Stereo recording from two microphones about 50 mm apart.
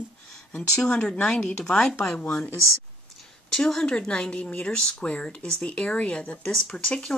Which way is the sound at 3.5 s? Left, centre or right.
Centre.